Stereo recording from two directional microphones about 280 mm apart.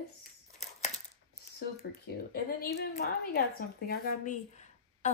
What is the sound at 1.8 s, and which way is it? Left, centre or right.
A woman's voice, left.